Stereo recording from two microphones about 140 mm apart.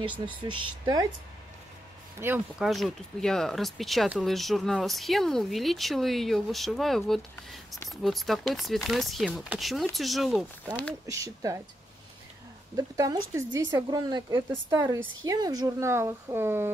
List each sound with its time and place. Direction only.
0.3 s speech: 35° right (ahead or behind)
2.1 s speech: 15° right (ahead or behind)
2.6 s speech: centre (ahead or behind)
11.1 s speech: 20° right (ahead or behind)
12.7 s speech: 25° right (ahead or behind)
14.8 s speech: 25° right (ahead or behind)